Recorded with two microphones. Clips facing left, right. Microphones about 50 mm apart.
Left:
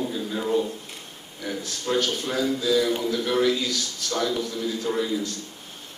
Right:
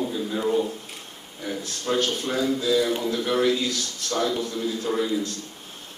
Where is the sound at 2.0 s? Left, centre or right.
Centre.